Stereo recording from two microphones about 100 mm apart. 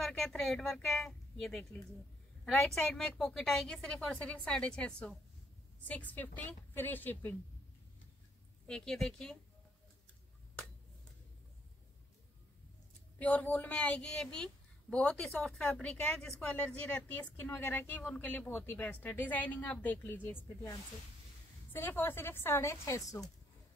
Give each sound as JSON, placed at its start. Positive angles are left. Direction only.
{"t": 0.0, "sound": "a woman's voice", "side_deg": 5}
{"t": 8.6, "sound": "a woman's voice", "side_deg": 5}
{"t": 13.2, "sound": "a woman's voice", "side_deg": 15}
{"t": 21.7, "sound": "a woman's voice", "side_deg": 20}